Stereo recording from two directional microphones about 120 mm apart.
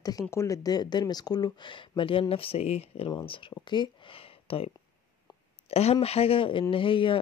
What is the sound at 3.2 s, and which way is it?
Speech, 40° left (ahead or behind).